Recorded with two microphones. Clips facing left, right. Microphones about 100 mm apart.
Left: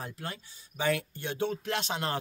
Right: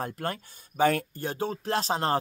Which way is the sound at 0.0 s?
50° right (ahead or behind).